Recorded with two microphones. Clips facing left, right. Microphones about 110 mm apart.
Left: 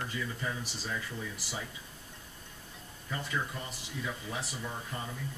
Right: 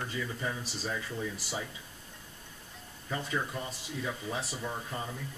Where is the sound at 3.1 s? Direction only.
20° right (ahead or behind).